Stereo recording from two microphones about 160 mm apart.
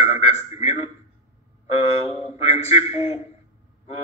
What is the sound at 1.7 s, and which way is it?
A man's voice, 40° left (ahead or behind).